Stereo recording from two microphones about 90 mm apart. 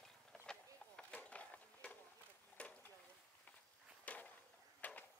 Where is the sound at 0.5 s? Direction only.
10° left (ahead or behind).